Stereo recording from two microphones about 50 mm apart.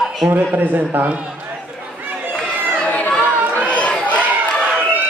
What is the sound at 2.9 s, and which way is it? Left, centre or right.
Chatter, left.